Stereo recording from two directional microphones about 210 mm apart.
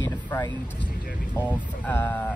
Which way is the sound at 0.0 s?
10° left (ahead or behind).